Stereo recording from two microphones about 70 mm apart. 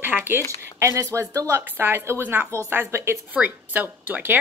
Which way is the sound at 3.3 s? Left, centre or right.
Right.